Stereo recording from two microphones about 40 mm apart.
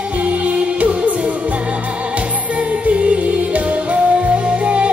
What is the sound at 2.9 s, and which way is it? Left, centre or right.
Music, right.